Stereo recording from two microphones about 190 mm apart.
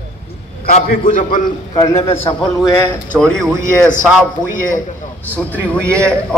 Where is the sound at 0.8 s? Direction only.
45° left (ahead or behind).